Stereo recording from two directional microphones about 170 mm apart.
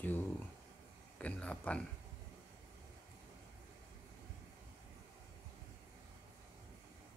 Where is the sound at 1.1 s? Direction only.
10° left (ahead or behind).